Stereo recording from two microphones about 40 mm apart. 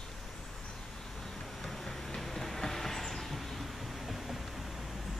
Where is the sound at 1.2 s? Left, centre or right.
Centre.